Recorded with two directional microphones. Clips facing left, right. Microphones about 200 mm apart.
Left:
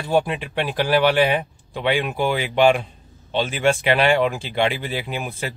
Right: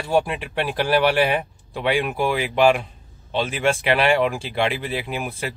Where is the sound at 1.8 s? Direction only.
Centre (ahead or behind).